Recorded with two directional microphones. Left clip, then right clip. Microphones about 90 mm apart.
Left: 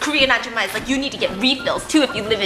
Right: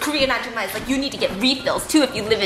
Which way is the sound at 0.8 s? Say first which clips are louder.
Left 1 dB; 5° right (ahead or behind).